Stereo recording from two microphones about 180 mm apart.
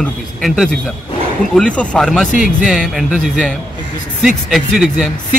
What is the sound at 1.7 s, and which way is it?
A man's voice, centre (ahead or behind).